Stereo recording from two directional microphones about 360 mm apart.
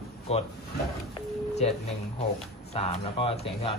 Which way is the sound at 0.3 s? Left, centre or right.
Centre.